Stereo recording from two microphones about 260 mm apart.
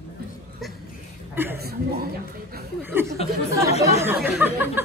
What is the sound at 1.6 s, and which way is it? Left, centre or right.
Speech, right.